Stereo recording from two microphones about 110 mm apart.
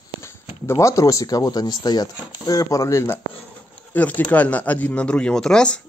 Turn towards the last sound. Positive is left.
turn(degrees=5)  # may be behind; listen again after turning